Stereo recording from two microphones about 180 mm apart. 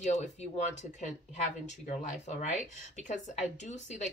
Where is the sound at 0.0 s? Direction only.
40° left (ahead or behind).